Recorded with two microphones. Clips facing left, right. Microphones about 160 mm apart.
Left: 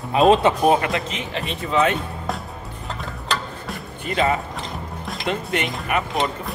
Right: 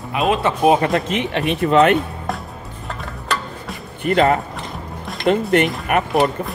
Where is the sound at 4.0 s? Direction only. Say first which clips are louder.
Right 6 dB; 60° right (ahead or behind).